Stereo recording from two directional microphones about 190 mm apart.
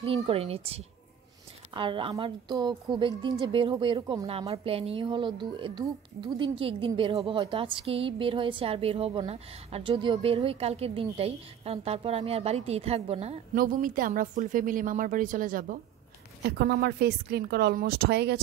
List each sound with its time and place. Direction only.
0.0 s a woman's voice: 30° right (ahead or behind)
13.6 s a woman's voice: 45° right (ahead or behind)
16.4 s a woman's voice: 65° right (ahead or behind)